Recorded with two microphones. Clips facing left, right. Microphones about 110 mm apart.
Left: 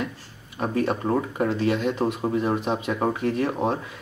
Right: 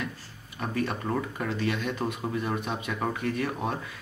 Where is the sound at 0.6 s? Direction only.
35° left (ahead or behind).